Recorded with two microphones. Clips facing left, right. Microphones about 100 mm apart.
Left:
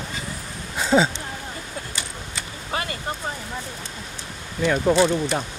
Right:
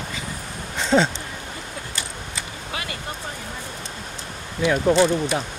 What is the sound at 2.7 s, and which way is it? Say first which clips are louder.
Vehicle: left 4 dB; 40° left (ahead or behind).